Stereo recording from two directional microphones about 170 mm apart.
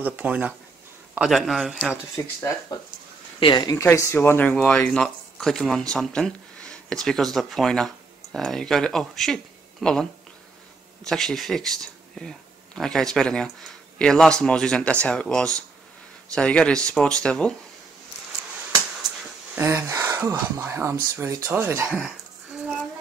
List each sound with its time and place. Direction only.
0.0 s speech: 10° right (ahead or behind)
2.2 s speech: 20° left (ahead or behind)
3.3 s speech: 25° left (ahead or behind); by 10.0 s 5° left (ahead or behind)
11.1 s speech: 5° left (ahead or behind)
19.5 s speech: 15° right (ahead or behind)